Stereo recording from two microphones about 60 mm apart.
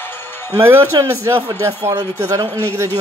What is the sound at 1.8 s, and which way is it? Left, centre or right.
Speech, right.